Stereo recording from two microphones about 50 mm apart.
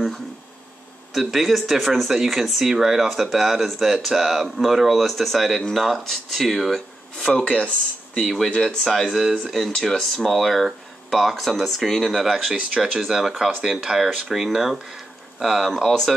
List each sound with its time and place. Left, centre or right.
1.1 s speech: centre
7.4 s speech: left
8.2 s speech: centre